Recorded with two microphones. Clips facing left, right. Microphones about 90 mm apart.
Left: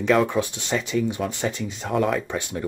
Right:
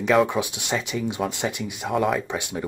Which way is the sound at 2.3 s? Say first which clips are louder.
Left 1 dB; 15° right (ahead or behind).